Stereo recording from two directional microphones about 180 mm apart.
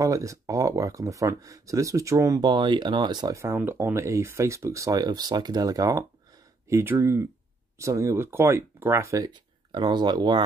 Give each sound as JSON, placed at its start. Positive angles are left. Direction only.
{"t": 0.0, "sound": "speech", "side_deg": -15}